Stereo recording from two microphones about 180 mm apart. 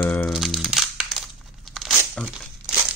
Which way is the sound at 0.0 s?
5° left (ahead or behind).